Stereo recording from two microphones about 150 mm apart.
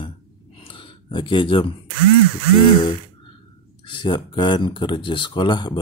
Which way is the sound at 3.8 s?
30° left (ahead or behind).